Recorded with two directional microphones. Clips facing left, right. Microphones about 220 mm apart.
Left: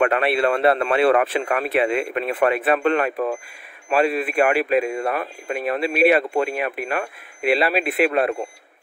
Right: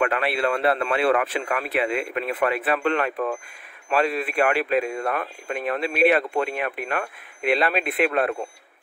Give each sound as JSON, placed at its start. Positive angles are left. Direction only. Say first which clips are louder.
{"t": 0.0, "sound": "speech", "louder": "left 4 dB", "side_deg": 25}